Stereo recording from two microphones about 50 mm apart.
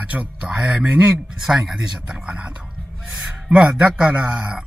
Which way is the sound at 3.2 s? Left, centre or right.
Centre.